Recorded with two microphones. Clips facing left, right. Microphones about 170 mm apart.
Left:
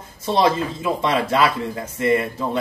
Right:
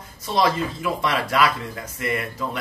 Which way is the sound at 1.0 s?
25° left (ahead or behind).